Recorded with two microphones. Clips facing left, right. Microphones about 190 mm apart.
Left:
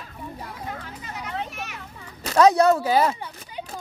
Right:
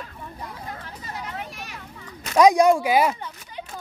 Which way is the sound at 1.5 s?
35° right (ahead or behind).